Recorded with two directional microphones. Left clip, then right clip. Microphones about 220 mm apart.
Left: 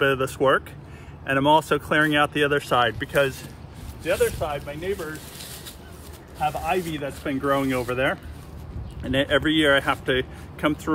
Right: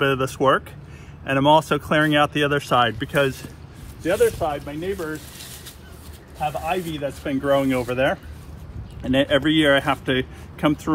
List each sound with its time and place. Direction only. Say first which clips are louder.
0.0 s speech: right 1 dB; 20° right (ahead or behind)
6.4 s speech: even; centre (ahead or behind); by 10.8 s 25° right (ahead or behind)